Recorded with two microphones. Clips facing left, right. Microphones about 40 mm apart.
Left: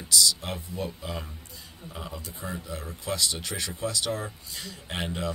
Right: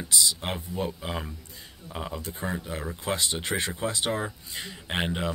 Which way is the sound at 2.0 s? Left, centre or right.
Centre.